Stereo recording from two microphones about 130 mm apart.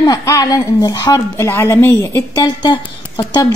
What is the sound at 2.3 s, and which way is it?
Speech, 35° left (ahead or behind).